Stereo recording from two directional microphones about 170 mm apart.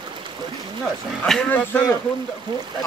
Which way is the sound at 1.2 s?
5° left (ahead or behind).